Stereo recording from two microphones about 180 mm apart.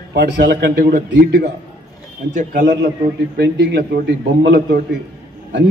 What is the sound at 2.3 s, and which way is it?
Speech, 45° right (ahead or behind).